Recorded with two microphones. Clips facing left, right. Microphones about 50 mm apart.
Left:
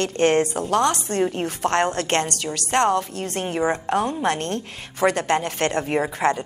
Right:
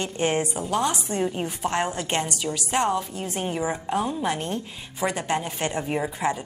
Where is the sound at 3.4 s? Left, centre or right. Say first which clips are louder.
Left 5 dB; left.